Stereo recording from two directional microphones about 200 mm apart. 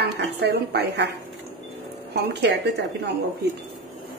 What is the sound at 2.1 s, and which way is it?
Speech, 60° right (ahead or behind).